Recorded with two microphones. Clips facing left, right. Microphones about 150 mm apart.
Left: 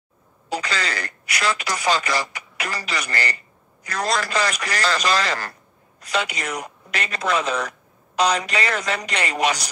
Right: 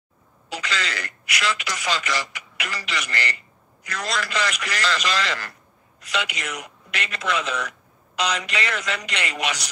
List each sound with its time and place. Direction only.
0.5 s speech: 35° left (ahead or behind)